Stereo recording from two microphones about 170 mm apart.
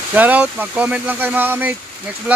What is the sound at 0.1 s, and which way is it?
Speech, 10° right (ahead or behind).